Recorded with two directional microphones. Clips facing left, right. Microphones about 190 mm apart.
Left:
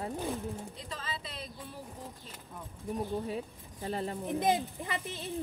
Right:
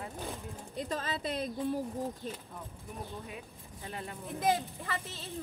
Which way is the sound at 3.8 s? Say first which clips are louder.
Left 7 dB; 35° left (ahead or behind).